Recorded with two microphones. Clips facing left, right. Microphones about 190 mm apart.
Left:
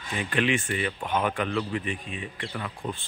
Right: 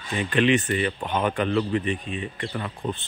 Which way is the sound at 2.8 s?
30° right (ahead or behind).